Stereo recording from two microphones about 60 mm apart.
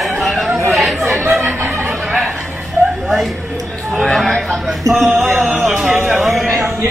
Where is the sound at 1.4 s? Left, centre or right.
Right.